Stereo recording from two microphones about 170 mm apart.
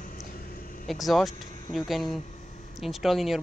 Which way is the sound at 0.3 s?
55° left (ahead or behind).